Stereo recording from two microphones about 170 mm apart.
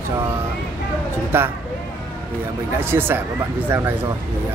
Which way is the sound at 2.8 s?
15° right (ahead or behind).